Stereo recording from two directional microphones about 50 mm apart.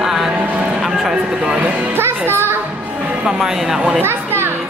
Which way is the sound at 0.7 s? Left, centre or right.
Centre.